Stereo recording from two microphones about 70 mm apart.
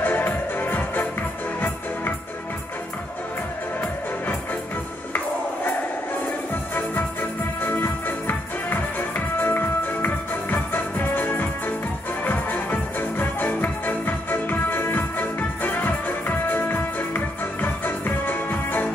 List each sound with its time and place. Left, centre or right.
0.0 s music: left
5.1 s music: left